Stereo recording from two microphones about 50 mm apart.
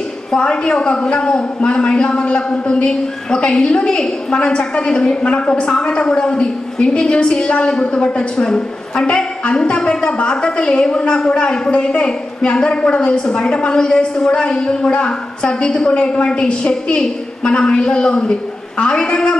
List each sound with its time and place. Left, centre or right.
0.4 s a man's voice: centre